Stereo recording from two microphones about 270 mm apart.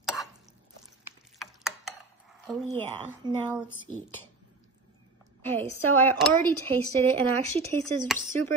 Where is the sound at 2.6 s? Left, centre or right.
Centre.